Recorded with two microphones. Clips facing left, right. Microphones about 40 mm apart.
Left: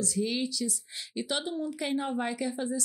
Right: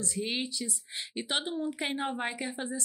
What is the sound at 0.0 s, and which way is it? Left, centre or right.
A woman's voice, right.